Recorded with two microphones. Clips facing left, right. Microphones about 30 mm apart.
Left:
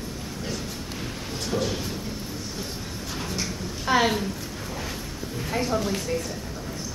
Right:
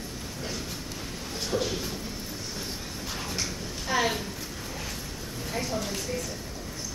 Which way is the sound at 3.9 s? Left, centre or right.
Left.